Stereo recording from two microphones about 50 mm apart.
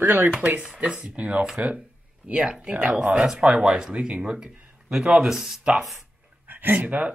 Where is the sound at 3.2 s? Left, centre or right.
Centre.